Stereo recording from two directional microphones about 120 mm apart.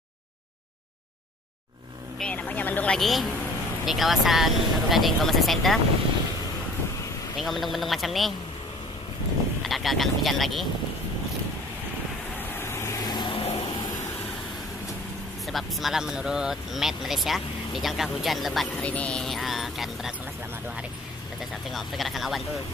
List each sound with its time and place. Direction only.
2.1 s speech: 10° left (ahead or behind)
3.0 s speech: centre (ahead or behind)
7.3 s speech: centre (ahead or behind)
9.6 s speech: centre (ahead or behind)
12.5 s vehicle: 20° left (ahead or behind); by 13.5 s 40° left (ahead or behind)
15.4 s speech: centre (ahead or behind)
21.4 s speech: centre (ahead or behind)